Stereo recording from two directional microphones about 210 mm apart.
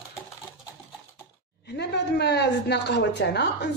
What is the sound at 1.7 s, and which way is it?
A woman's voice, 55° left (ahead or behind).